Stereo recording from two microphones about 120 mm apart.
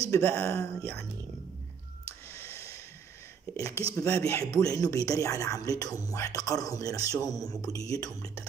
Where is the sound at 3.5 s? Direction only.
25° left (ahead or behind).